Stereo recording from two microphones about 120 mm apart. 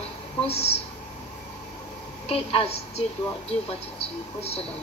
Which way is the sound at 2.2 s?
55° left (ahead or behind).